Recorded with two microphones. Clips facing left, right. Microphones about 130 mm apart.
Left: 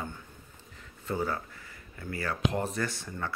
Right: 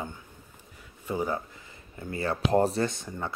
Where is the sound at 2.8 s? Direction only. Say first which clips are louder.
Right 2 dB; 20° right (ahead or behind).